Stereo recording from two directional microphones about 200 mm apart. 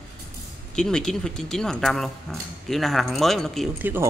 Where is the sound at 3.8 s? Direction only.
10° right (ahead or behind).